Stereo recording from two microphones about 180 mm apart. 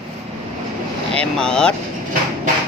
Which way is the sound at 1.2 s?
5° left (ahead or behind).